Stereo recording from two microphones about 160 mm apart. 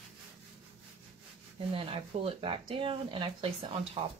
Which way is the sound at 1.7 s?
35° right (ahead or behind).